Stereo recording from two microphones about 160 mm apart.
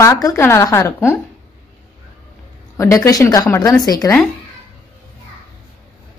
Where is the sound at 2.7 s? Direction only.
20° left (ahead or behind).